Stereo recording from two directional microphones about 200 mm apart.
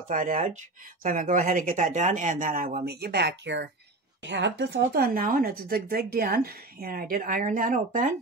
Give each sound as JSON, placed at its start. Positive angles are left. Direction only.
{"t": 0.1, "sound": "speech", "side_deg": -40}